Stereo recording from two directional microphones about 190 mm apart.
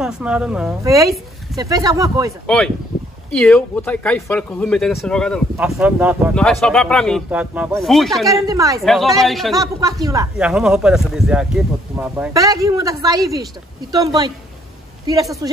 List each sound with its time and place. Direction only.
0.0 s speech: 5° right (ahead or behind)
0.8 s a man's voice: 15° right (ahead or behind)
2.4 s speech: 5° left (ahead or behind)
6.3 s speech: 5° left (ahead or behind)
8.5 s a man's voice: 15° right (ahead or behind)
8.8 s speech: centre (ahead or behind)
9.6 s a man's voice: 20° right (ahead or behind)
10.3 s speech: 5° right (ahead or behind)
12.4 s a man's voice: 15° right (ahead or behind)
15.4 s a woman's voice: 20° right (ahead or behind)